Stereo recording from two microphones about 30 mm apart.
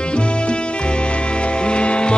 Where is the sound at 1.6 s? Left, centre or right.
Left.